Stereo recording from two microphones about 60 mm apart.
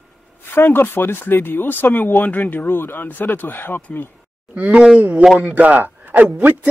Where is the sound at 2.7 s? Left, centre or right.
Left.